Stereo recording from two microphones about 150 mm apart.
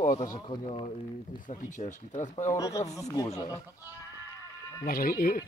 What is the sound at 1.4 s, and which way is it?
Speech, 55° left (ahead or behind).